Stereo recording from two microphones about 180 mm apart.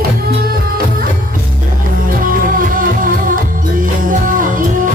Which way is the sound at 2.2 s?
50° right (ahead or behind).